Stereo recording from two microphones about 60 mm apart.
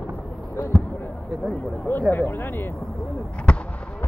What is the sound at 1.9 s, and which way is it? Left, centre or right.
Speech, left.